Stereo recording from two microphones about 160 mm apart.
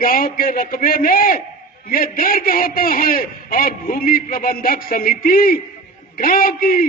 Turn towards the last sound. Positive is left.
turn(degrees=65)  # may be behind; listen again after turning